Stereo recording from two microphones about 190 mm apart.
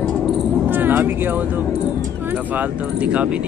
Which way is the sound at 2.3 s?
10° right (ahead or behind).